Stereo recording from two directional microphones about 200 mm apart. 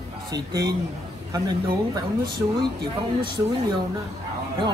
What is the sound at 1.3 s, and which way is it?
Speech, 20° right (ahead or behind).